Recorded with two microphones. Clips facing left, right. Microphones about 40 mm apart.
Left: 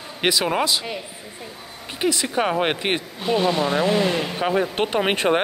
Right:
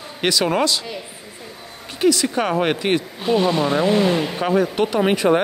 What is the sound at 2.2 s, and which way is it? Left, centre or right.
Speech, centre.